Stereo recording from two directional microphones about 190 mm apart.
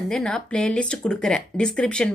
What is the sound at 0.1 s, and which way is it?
Speech, 5° left (ahead or behind).